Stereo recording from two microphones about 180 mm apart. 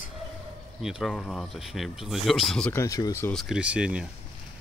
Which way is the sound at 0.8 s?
Centre (ahead or behind).